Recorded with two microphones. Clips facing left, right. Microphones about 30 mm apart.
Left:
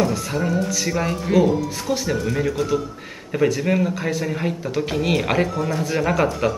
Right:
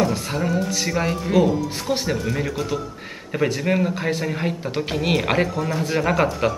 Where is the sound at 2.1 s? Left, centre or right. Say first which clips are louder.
Left 2 dB; centre.